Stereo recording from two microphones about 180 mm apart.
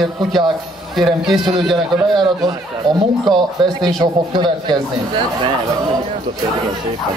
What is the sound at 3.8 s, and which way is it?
Speech, 25° right (ahead or behind).